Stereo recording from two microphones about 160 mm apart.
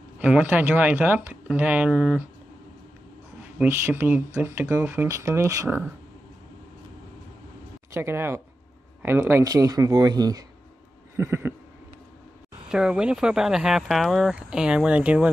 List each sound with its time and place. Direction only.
0.2 s speech: 10° right (ahead or behind)
3.5 s speech: 15° right (ahead or behind)
7.9 s speech: 15° right (ahead or behind)
12.6 s speech: 5° right (ahead or behind)